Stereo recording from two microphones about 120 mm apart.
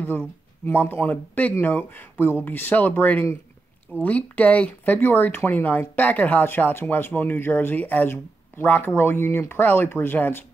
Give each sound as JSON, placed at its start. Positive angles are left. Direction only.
{"t": 0.0, "sound": "speech", "side_deg": 15}